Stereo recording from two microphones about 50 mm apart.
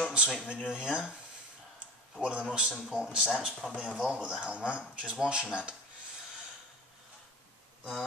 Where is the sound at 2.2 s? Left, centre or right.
Right.